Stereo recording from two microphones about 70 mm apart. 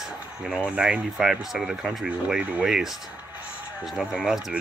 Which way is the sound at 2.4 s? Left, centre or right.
Centre.